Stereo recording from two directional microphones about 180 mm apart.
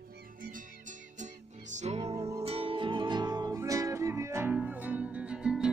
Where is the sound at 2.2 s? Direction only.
15° right (ahead or behind).